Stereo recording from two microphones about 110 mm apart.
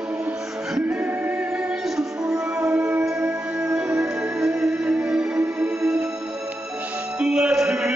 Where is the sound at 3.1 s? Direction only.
5° right (ahead or behind).